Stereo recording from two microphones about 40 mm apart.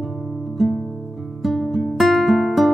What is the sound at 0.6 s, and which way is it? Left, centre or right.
Music, centre.